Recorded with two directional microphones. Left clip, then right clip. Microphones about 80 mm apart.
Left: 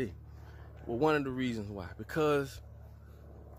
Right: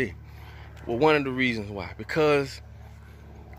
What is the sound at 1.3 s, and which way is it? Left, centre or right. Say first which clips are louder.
Speech: right 10 dB; left.